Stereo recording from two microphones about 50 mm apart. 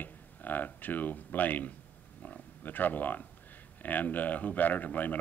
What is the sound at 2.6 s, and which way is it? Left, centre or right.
Speech, left.